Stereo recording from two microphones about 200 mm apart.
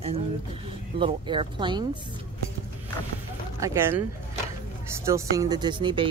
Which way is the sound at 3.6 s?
10° right (ahead or behind).